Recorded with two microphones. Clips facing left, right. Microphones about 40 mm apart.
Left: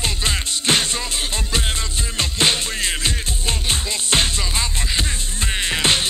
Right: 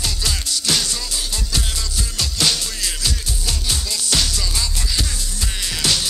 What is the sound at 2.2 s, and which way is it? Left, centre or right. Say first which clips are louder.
Music: left 2 dB; left.